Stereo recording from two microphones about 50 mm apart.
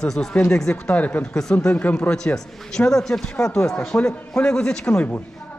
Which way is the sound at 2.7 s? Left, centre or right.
Centre.